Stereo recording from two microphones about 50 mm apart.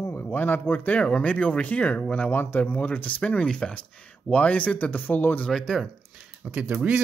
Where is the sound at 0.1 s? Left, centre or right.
Left.